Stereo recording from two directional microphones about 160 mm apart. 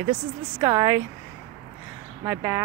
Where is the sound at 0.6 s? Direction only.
20° right (ahead or behind).